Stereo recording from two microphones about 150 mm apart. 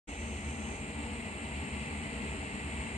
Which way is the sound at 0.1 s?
50° left (ahead or behind).